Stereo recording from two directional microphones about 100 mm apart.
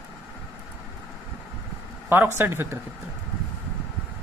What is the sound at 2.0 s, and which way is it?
Speech, 20° right (ahead or behind).